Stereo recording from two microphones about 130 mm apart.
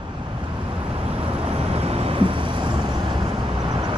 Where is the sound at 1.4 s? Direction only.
50° right (ahead or behind).